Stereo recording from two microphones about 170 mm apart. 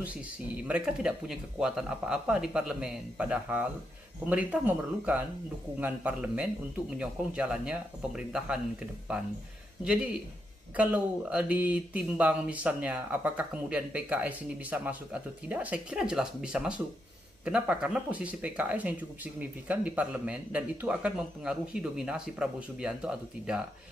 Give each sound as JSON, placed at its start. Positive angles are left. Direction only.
{"t": 0.7, "sound": "speech", "side_deg": -5}
{"t": 10.8, "sound": "speech", "side_deg": -5}